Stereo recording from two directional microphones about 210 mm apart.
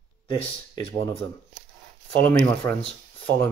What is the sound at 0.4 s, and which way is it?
Speech, 25° left (ahead or behind).